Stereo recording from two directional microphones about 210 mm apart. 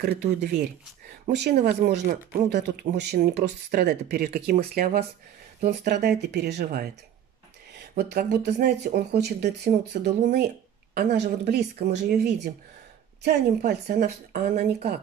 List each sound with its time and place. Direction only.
0.0 s speech: 50° right (ahead or behind)
7.9 s speech: 45° right (ahead or behind)